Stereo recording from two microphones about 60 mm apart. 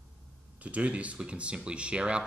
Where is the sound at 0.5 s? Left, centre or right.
Right.